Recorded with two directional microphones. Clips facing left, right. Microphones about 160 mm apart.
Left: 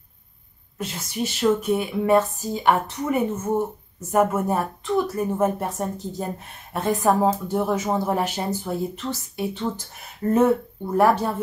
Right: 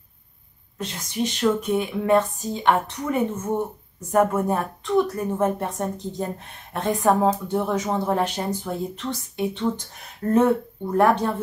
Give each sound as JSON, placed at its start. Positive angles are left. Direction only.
{"t": 0.7, "sound": "a woman's voice", "side_deg": 5}